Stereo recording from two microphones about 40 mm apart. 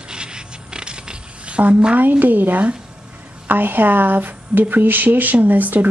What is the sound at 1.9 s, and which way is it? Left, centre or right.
A woman's voice, right.